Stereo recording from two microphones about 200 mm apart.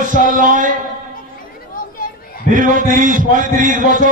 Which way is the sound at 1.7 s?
45° left (ahead or behind).